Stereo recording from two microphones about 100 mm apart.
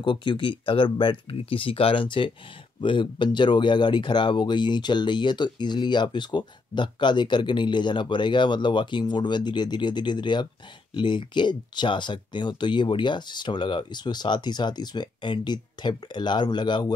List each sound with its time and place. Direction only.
0.0 s speech: 55° left (ahead or behind)